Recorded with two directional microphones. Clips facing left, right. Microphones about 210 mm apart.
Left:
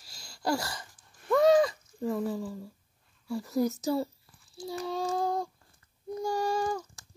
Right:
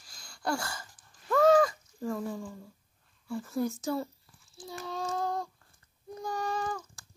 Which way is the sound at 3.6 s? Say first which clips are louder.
Left 3 dB; 35° left (ahead or behind).